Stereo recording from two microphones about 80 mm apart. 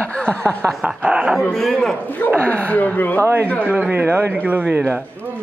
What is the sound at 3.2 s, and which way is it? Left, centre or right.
A man's voice, right.